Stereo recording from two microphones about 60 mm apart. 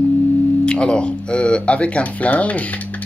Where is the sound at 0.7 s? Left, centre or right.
Centre.